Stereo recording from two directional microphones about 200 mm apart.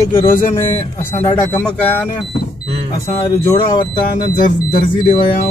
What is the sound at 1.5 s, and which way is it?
Speech, 10° left (ahead or behind).